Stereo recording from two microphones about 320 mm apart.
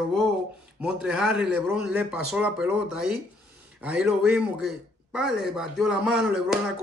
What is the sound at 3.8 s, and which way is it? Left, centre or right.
A man's voice, centre.